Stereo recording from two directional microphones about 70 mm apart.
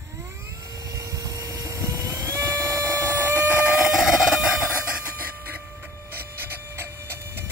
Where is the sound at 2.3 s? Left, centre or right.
Right.